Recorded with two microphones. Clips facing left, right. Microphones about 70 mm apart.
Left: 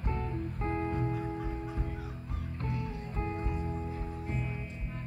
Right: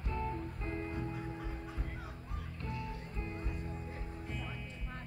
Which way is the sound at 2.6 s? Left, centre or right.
Left.